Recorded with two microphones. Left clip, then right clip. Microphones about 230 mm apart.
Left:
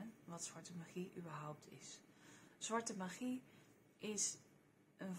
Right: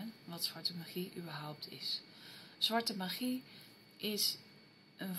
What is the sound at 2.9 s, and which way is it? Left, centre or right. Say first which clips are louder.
Speech: right 8 dB; centre.